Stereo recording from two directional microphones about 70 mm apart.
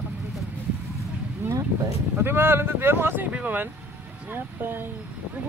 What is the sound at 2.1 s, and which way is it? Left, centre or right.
Speech, right.